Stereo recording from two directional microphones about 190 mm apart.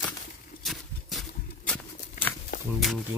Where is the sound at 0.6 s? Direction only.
Centre (ahead or behind).